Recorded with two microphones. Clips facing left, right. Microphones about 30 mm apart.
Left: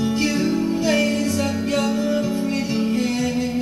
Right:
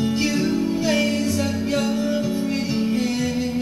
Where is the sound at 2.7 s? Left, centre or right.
Centre.